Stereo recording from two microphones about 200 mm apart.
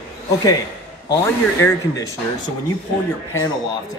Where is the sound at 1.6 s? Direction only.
15° left (ahead or behind).